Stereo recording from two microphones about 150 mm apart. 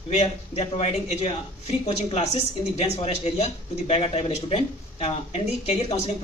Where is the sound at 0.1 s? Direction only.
45° left (ahead or behind).